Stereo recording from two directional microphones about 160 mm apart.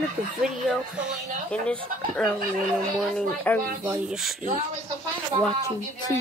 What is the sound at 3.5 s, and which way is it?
Speech, 10° left (ahead or behind).